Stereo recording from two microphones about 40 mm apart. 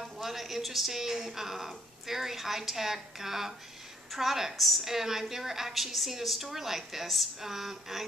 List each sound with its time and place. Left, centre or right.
0.0 s a woman's voice: centre